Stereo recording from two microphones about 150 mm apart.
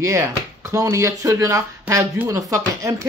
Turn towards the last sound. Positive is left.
turn(degrees=-20)  # may be behind; listen again after turning